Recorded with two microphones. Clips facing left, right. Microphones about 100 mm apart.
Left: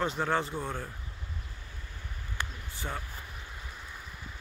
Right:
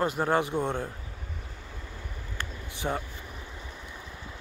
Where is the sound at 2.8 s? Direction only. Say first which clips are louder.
Right 7 dB; 30° right (ahead or behind).